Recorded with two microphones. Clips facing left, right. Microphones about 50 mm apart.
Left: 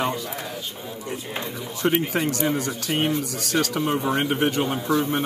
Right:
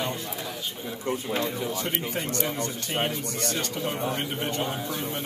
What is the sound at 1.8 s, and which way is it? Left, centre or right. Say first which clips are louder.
Speech: left 8 dB; left.